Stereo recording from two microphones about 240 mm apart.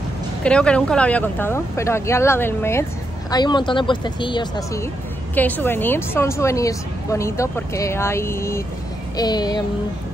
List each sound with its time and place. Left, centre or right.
0.4 s speech: centre